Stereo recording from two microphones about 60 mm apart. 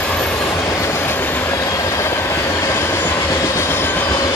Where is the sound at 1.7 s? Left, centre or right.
Left.